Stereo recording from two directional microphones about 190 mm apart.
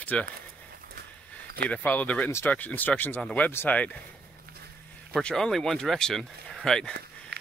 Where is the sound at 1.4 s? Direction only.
50° right (ahead or behind).